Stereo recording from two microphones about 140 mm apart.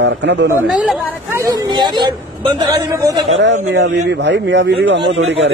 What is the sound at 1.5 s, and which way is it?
A man's voice, 30° right (ahead or behind).